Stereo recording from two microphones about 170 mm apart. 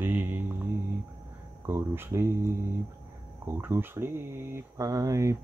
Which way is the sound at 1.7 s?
15° right (ahead or behind).